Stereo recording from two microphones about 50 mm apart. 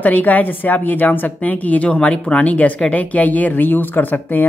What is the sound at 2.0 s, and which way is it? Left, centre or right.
Speech, centre.